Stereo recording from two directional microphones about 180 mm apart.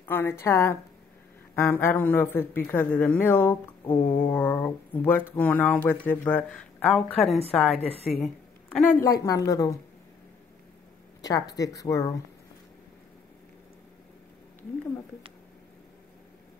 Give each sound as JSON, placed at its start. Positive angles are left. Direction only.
{"t": 0.0, "sound": "speech", "side_deg": 10}
{"t": 9.0, "sound": "speech", "side_deg": 20}
{"t": 11.2, "sound": "speech", "side_deg": 20}